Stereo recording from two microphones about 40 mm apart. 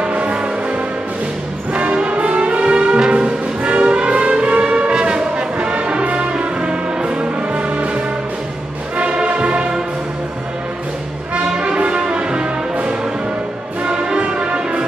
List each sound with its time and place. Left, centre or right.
0.0 s music: right
1.7 s brass instrument: right
8.9 s music: right
11.3 s brass instrument: right
13.8 s music: right